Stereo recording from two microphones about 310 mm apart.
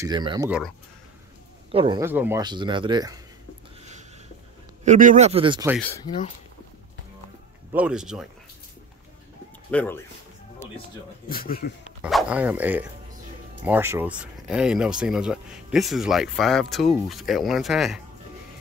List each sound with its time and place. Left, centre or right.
0.0 s speech: centre
1.7 s speech: centre
4.8 s a man's voice: right
5.8 s speech: centre
7.7 s speech: centre
9.7 s speech: centre
11.2 s speech: left
12.0 s speech: centre